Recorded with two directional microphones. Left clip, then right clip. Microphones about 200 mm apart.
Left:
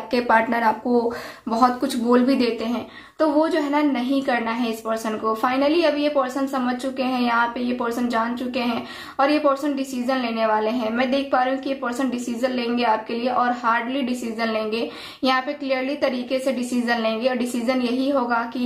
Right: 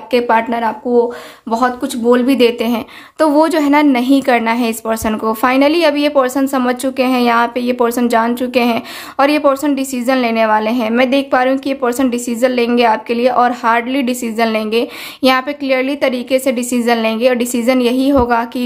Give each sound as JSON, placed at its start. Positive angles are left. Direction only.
{"t": 0.1, "sound": "a woman's voice", "side_deg": -25}